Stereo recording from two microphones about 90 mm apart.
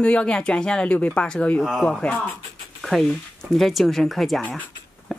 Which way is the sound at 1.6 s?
5° right (ahead or behind).